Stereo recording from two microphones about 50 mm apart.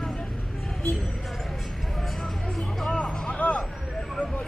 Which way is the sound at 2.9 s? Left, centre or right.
Centre.